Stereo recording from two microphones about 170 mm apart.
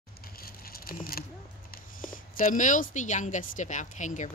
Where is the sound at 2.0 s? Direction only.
55° left (ahead or behind).